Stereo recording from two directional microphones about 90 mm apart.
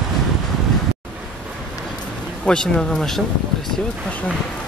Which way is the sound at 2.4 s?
10° left (ahead or behind).